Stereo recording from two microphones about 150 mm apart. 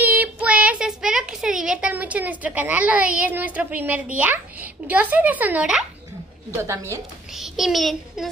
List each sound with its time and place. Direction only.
0.0 s child singing: 10° right (ahead or behind)
6.7 s a woman's voice: 20° right (ahead or behind)
7.3 s a child's voice: centre (ahead or behind)